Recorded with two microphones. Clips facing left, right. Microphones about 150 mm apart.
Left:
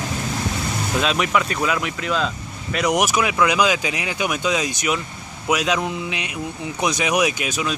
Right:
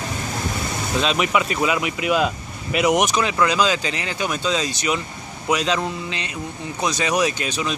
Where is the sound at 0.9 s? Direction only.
Centre (ahead or behind).